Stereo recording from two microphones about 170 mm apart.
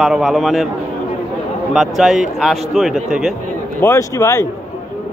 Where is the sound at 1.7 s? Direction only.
Centre (ahead or behind).